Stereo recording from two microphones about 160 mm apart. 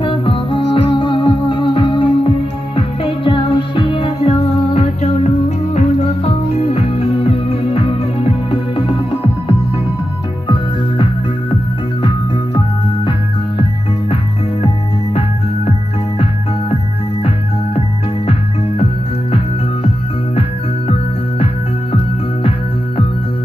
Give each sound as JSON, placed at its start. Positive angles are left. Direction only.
{"t": 0.0, "sound": "music", "side_deg": 35}